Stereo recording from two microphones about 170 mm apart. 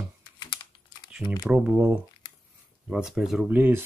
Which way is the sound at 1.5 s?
10° right (ahead or behind).